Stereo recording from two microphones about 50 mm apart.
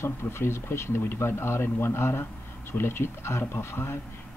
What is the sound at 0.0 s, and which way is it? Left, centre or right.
Speech, left.